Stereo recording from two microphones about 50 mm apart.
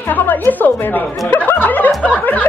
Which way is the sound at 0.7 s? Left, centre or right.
Left.